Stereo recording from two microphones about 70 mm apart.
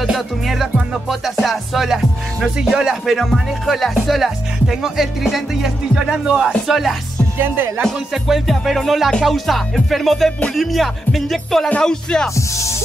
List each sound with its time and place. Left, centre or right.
0.0 s music: centre
7.3 s speech: right
8.1 s music: centre